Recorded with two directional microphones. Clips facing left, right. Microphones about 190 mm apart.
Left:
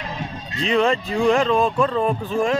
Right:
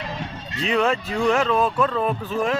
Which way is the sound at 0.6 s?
5° right (ahead or behind).